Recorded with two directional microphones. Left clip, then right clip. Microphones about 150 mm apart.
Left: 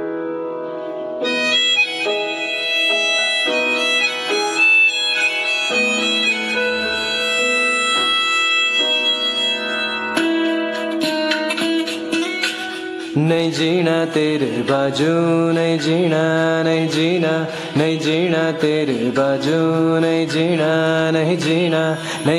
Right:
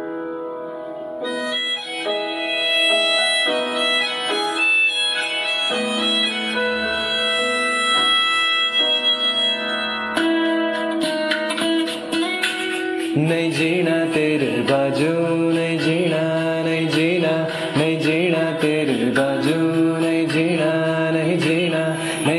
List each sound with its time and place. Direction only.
1.5 s music: 50° left (ahead or behind)
2.7 s music: 35° left (ahead or behind)
13.3 s music: 20° left (ahead or behind)
20.1 s music: 20° left (ahead or behind)